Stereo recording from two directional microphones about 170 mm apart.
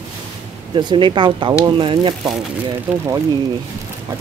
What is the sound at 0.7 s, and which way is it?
Speech, 30° right (ahead or behind).